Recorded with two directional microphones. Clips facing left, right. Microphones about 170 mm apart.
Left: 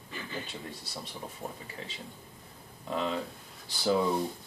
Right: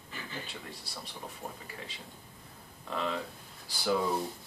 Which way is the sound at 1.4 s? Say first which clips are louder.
Left 3 dB; 30° left (ahead or behind).